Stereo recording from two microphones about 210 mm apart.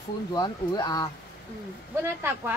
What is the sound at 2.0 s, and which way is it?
Speech, 10° right (ahead or behind).